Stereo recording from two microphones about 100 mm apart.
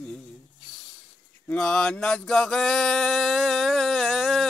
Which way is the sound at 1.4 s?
10° left (ahead or behind).